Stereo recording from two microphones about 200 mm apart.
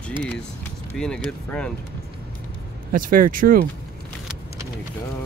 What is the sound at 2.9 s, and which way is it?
Speech, 45° right (ahead or behind).